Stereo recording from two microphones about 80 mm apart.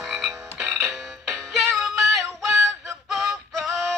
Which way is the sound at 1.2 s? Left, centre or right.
Centre.